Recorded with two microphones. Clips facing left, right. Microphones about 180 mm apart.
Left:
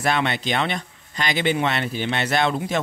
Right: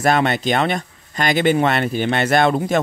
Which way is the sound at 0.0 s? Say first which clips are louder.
Right 6 dB; 45° right (ahead or behind).